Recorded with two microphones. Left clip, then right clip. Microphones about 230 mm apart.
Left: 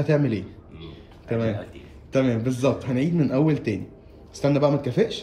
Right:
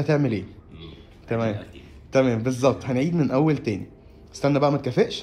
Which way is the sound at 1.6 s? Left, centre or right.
Centre.